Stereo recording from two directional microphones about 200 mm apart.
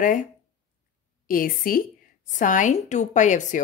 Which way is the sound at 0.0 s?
40° left (ahead or behind).